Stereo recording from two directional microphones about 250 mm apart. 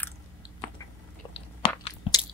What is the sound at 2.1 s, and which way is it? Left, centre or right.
Biting, left.